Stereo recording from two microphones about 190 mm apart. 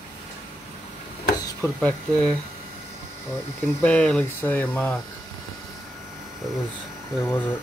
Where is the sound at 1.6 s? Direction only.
10° left (ahead or behind).